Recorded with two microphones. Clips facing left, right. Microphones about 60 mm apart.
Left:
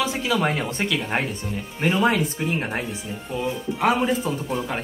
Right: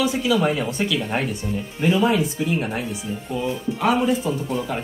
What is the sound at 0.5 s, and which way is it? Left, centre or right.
Speech, left.